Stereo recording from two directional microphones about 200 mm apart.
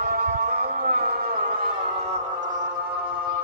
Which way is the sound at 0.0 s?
50° right (ahead or behind).